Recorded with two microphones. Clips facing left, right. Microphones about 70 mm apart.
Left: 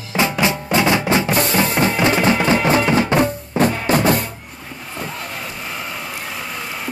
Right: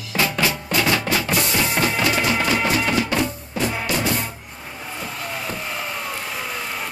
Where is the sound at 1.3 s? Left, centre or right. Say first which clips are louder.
Left 4 dB; left.